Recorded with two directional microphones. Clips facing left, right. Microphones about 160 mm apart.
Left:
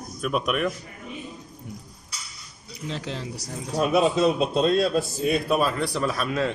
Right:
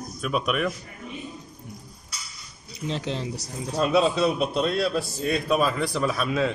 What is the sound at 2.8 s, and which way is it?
Speech, 25° right (ahead or behind).